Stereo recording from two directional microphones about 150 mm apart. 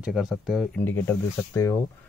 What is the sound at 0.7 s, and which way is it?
Speech, 15° left (ahead or behind).